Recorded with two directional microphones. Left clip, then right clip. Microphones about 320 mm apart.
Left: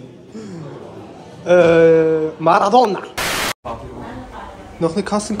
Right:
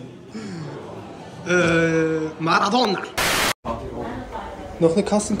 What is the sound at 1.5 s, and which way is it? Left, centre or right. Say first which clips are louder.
Speech: left 9 dB; centre.